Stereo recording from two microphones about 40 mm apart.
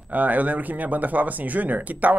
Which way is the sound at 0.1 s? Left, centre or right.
Right.